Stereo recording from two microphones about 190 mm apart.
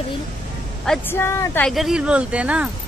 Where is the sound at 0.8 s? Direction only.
10° left (ahead or behind).